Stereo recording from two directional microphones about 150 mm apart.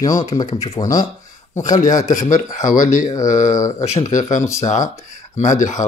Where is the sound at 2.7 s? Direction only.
60° left (ahead or behind).